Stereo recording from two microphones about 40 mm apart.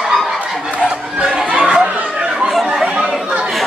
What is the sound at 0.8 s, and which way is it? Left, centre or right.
Chatter, right.